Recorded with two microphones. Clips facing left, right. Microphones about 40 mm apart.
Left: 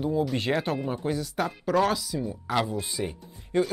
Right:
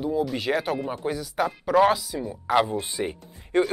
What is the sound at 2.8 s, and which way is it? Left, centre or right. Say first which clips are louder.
Speech: right 3 dB; right.